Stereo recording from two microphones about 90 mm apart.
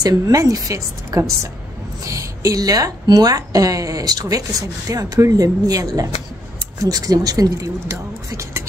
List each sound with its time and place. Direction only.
0.0 s a woman's voice: 40° right (ahead or behind)